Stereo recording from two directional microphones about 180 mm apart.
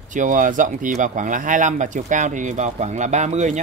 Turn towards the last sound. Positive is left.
turn(degrees=-40)  # may be behind; listen again after turning